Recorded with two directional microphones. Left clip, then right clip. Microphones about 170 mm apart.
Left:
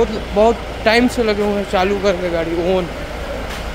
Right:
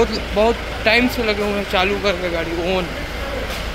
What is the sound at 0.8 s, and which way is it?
Speech, 35° left (ahead or behind).